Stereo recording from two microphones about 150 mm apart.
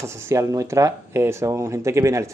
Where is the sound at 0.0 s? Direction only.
20° right (ahead or behind).